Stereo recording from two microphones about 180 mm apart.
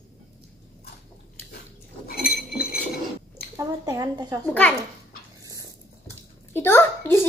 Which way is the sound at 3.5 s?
15° right (ahead or behind).